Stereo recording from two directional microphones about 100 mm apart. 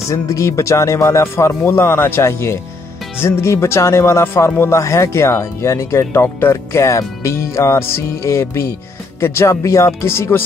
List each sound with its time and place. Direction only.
0.1 s speech: 35° left (ahead or behind)